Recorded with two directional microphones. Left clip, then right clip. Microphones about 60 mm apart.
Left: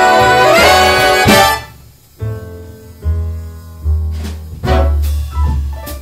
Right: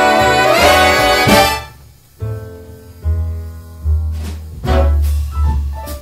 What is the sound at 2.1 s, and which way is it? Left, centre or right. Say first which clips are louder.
Music: left 2 dB; left.